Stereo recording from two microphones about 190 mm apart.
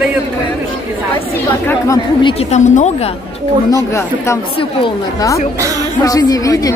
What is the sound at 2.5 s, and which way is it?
Speech, 40° left (ahead or behind).